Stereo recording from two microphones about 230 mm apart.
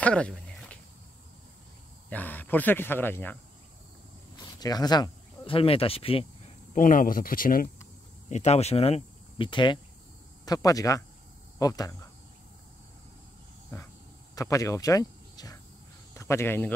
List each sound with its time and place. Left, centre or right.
0.0 s a sound: centre
2.0 s speech: centre
4.6 s speech: centre
14.3 s speech: centre